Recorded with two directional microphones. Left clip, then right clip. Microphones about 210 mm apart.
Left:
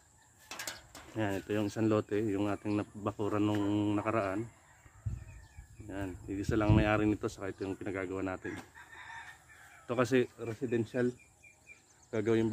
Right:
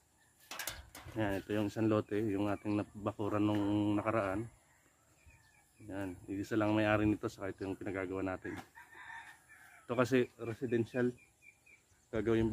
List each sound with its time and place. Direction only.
1.1 s speech: 10° right (ahead or behind)
5.9 s speech: 10° right (ahead or behind)
8.7 s chicken: 25° left (ahead or behind)
9.8 s speech: 5° right (ahead or behind)
12.1 s speech: centre (ahead or behind)